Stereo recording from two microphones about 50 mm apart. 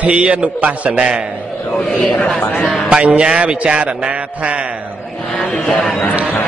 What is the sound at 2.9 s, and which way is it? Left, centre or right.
A man's voice, centre.